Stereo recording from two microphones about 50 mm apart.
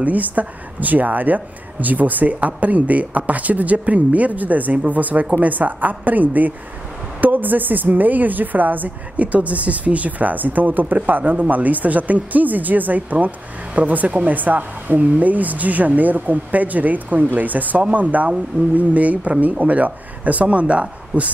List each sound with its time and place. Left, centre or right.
0.0 s a woman's voice: right